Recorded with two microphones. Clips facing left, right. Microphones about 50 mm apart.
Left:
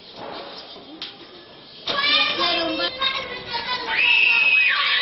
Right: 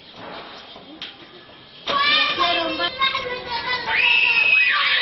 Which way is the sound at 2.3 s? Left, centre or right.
Right.